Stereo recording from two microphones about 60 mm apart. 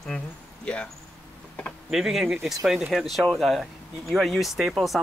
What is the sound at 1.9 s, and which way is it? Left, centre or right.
Speech, centre.